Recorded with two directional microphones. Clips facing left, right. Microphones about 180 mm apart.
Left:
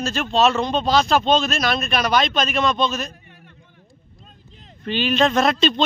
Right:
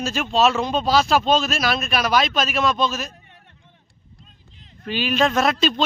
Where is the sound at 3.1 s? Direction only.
30° right (ahead or behind).